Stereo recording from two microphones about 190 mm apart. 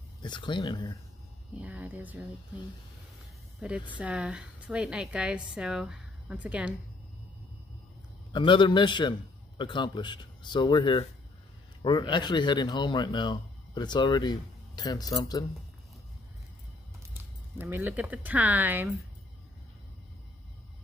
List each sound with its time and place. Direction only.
0.2 s speech: 25° left (ahead or behind)
1.5 s speech: 5° right (ahead or behind)
3.5 s a woman's voice: 5° right (ahead or behind)
8.3 s speech: 25° left (ahead or behind)
17.6 s speech: 10° right (ahead or behind)